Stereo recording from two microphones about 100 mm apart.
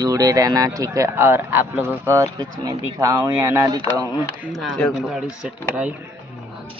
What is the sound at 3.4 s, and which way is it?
Speech, 20° right (ahead or behind).